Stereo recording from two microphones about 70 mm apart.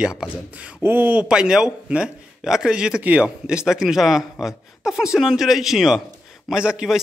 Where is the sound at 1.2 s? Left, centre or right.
Centre.